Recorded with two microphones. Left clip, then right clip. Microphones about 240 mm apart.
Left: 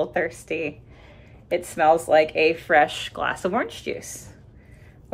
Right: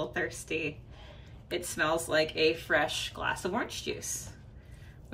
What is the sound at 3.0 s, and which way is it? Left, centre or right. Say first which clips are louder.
Speech: left 7 dB; left.